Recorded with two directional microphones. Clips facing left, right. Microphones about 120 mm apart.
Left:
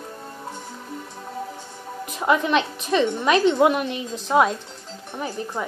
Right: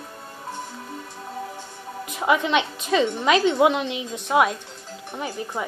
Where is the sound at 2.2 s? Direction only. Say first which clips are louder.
Left 1 dB; 15° right (ahead or behind).